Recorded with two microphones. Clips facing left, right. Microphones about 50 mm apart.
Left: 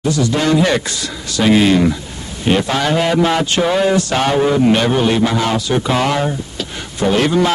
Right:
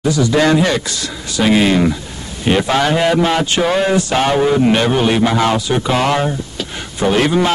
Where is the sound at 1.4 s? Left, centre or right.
Centre.